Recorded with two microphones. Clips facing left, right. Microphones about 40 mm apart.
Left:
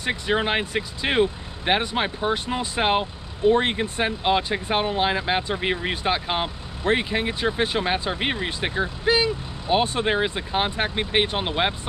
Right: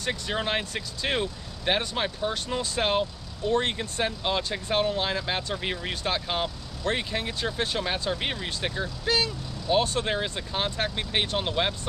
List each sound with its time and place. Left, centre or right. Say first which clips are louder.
0.0 s speech: left 6 dB; left